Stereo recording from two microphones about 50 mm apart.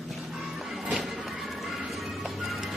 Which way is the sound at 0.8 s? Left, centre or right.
Centre.